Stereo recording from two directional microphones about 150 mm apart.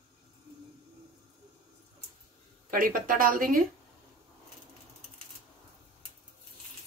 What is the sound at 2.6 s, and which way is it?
Speech, 65° right (ahead or behind).